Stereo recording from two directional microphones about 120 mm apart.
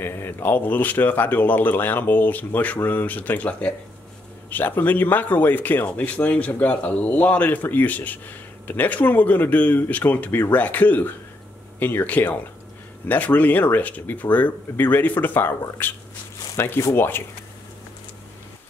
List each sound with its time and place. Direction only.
0.0 s speech: 20° left (ahead or behind)